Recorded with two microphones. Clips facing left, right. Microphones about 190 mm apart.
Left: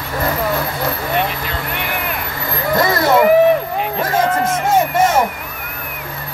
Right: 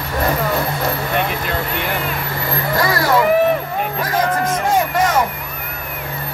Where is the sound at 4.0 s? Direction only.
25° left (ahead or behind).